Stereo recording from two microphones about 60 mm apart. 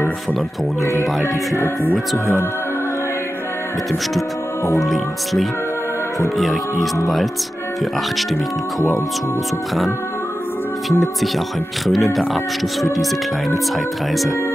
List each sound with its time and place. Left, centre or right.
0.8 s music: left
4.8 s speech: centre
10.9 s speech: centre